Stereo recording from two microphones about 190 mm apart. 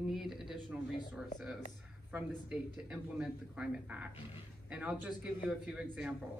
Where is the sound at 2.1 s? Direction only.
5° right (ahead or behind).